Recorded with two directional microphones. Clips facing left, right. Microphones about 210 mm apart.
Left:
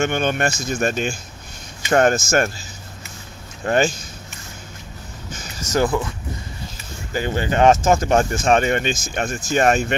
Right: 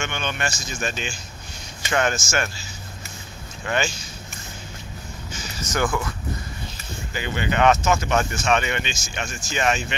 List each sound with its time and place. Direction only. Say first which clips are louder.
0.0 s speech: left 8 dB; 50° left (ahead or behind)
3.6 s speech: left 7 dB; 40° left (ahead or behind)
5.6 s speech: left 5 dB; 40° left (ahead or behind)
7.2 s speech: left 4 dB; 40° left (ahead or behind)
8.2 s speech: left 5 dB; 35° left (ahead or behind)